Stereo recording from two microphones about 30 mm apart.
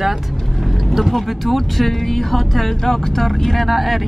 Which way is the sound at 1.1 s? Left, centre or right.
Centre.